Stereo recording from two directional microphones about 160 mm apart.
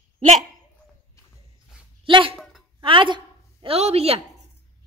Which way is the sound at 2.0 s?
30° right (ahead or behind).